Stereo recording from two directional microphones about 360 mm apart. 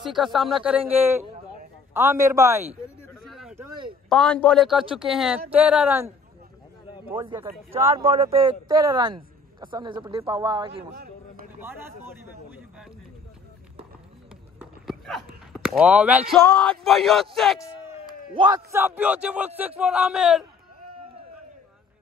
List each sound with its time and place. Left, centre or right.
0.0 s a man's voice: centre
3.1 s a sound: centre
4.1 s a man's voice: centre
7.1 s a man's voice: centre
14.6 s a sound: centre
16.8 s a man's voice: centre
18.3 s a man's voice: centre